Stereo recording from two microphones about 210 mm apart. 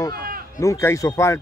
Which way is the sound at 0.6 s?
15° left (ahead or behind).